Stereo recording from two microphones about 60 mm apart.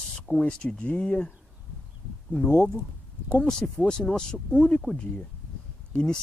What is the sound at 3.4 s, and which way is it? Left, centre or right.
Speech, centre.